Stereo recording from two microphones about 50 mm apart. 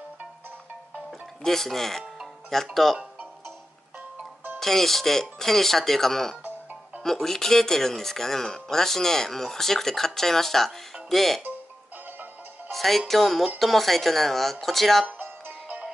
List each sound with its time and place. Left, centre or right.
1.4 s speech: centre
4.6 s speech: centre
12.7 s speech: centre
15.1 s music: right